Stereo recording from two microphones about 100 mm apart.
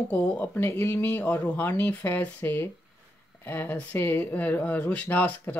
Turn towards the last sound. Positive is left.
turn(degrees=15)  # may be behind; listen again after turning